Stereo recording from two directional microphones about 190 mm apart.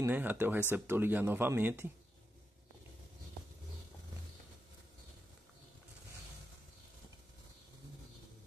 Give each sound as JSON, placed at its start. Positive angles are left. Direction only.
{"t": 0.0, "sound": "speech", "side_deg": -10}